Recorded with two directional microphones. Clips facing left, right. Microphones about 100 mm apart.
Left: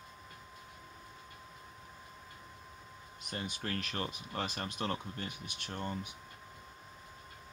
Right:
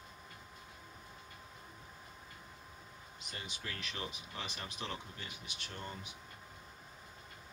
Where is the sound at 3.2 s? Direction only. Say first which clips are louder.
Left 7 dB; 50° left (ahead or behind).